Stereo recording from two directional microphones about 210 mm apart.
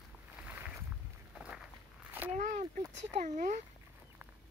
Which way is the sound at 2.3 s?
35° right (ahead or behind).